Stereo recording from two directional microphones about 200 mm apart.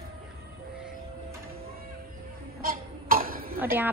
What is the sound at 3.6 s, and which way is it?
Speech, 10° right (ahead or behind).